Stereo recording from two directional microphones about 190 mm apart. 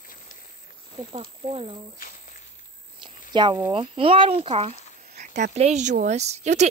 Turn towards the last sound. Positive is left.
turn(degrees=-35)  # may be behind; listen again after turning